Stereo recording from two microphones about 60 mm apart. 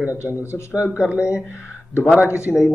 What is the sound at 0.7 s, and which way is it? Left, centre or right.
Speech, centre.